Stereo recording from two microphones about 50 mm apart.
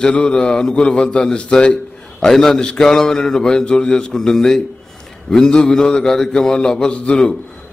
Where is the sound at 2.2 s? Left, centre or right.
Centre.